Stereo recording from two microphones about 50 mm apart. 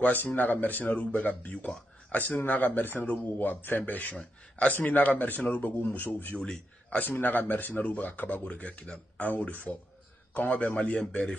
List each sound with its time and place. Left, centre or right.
0.0 s a man's voice: left